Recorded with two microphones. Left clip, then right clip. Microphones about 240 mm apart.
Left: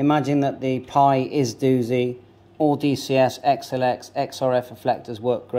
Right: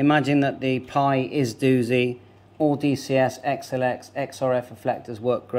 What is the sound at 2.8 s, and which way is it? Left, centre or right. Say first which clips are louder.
Speech: left 2 dB; centre.